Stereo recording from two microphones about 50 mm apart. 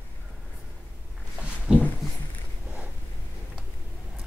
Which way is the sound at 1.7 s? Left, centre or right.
Right.